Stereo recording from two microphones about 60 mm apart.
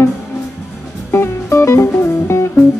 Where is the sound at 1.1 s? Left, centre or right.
Left.